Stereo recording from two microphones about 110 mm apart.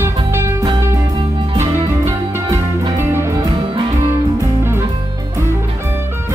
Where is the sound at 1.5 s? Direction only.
25° right (ahead or behind).